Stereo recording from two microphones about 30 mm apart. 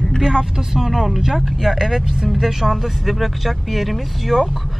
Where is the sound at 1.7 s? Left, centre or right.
Centre.